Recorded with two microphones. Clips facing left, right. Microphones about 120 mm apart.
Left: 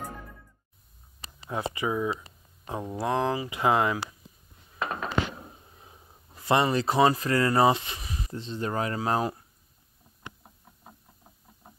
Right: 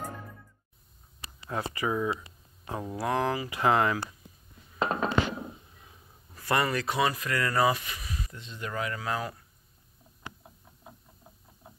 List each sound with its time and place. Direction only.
1.6 s speech: 20° left (ahead or behind)
4.7 s a sound: 25° right (ahead or behind)
5.8 s speech: 25° left (ahead or behind)